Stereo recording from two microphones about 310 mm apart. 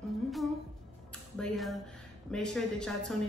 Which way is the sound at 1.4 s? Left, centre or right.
Centre.